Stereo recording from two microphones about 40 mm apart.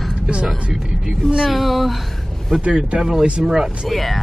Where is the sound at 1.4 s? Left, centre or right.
Centre.